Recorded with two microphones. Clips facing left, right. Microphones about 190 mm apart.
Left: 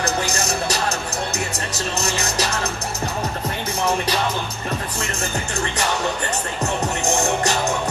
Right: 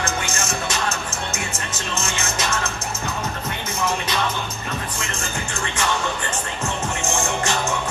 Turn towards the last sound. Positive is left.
turn(degrees=40)  # may be behind; listen again after turning